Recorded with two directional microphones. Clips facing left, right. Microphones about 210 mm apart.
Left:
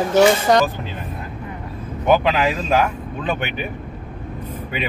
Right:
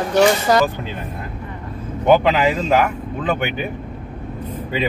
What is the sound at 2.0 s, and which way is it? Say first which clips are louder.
Speech: right 2 dB; 20° right (ahead or behind).